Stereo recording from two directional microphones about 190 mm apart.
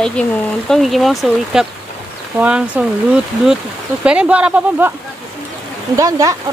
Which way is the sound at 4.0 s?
5° right (ahead or behind).